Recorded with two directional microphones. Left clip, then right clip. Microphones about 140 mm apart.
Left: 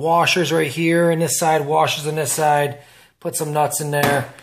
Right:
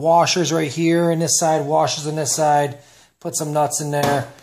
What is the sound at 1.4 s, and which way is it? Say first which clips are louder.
Speech: left 1 dB; 55° right (ahead or behind).